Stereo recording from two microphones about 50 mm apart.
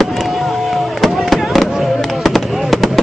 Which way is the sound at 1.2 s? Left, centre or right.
Centre.